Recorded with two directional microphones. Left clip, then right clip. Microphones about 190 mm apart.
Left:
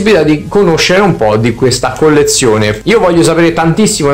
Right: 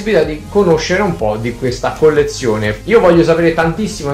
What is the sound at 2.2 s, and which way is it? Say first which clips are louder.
Speech: left 7 dB; 50° left (ahead or behind).